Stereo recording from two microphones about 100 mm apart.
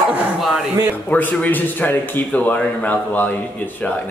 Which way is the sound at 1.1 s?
15° left (ahead or behind).